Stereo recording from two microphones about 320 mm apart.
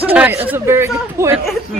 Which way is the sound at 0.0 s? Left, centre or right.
Centre.